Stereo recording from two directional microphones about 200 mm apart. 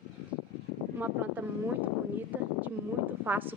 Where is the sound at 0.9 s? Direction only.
10° right (ahead or behind).